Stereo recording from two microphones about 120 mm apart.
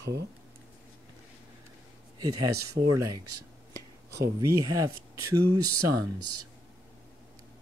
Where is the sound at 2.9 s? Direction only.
30° right (ahead or behind).